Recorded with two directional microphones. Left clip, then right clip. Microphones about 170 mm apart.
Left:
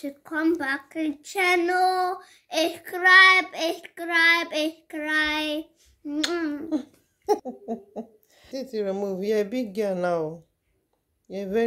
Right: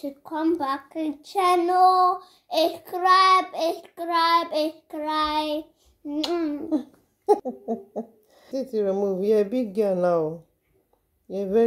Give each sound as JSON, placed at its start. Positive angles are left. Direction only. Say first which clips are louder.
{"t": 0.0, "sound": "speech", "louder": "even", "side_deg": 10}
{"t": 6.7, "sound": "speech", "louder": "right 2 dB", "side_deg": -20}